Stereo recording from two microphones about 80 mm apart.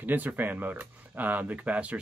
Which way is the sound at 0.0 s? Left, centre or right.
Right.